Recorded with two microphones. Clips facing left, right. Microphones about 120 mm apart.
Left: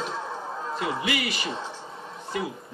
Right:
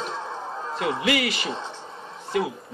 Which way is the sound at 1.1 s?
65° right (ahead or behind).